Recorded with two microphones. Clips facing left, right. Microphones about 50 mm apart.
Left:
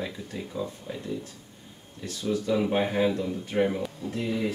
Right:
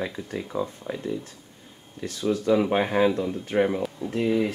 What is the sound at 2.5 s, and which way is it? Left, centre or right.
Speech, right.